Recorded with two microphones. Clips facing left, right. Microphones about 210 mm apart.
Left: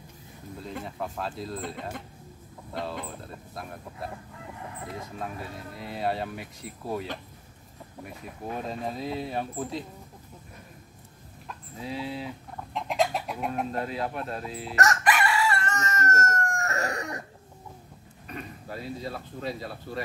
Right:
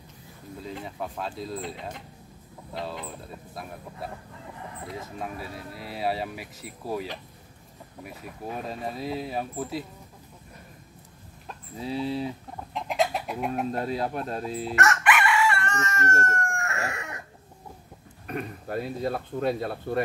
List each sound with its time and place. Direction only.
0.6 s speech: centre (ahead or behind)
4.8 s speech: centre (ahead or behind)
12.0 s speech: 35° right (ahead or behind)
12.7 s chicken: centre (ahead or behind)
13.8 s speech: 35° right (ahead or behind)
14.8 s chicken: 35° left (ahead or behind)
18.2 s speech: 55° right (ahead or behind)